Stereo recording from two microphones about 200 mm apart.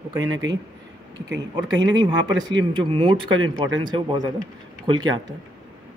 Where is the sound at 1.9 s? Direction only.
20° right (ahead or behind).